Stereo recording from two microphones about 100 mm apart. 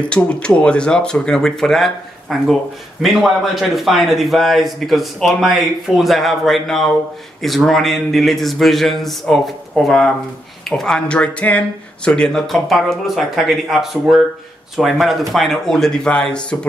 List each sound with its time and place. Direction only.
0.1 s a man's voice: 10° left (ahead or behind)